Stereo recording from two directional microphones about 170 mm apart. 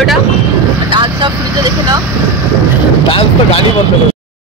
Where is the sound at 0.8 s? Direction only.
25° right (ahead or behind).